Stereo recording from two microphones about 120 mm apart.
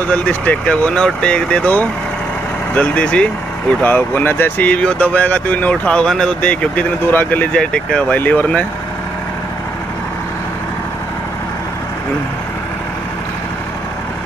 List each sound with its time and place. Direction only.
0.1 s speech: 10° left (ahead or behind)